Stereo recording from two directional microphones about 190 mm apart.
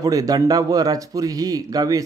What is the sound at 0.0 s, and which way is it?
Speech, 20° right (ahead or behind).